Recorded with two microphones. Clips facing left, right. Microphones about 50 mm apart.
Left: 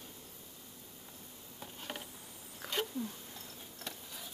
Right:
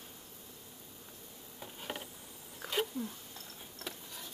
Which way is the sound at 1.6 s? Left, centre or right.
Centre.